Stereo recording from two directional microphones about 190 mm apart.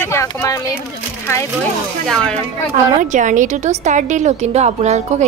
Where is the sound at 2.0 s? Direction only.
5° left (ahead or behind).